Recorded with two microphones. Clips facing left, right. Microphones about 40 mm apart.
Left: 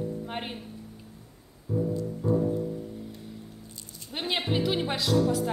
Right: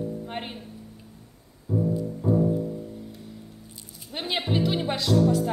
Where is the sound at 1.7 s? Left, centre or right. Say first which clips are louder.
Right 2 dB; right.